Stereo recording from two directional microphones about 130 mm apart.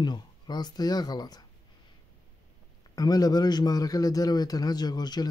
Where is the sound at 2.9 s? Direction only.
30° left (ahead or behind).